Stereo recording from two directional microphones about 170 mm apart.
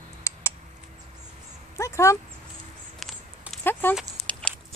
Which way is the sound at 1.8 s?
15° left (ahead or behind).